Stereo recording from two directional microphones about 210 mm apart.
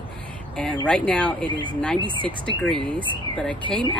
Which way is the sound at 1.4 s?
25° right (ahead or behind).